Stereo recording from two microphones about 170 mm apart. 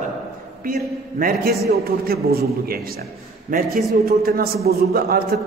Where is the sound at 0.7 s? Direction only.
60° right (ahead or behind).